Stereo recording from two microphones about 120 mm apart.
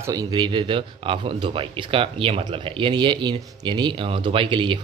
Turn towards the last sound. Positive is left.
turn(degrees=-40)  # may be behind; listen again after turning